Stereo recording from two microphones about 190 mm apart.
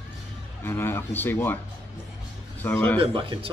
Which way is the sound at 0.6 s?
10° left (ahead or behind).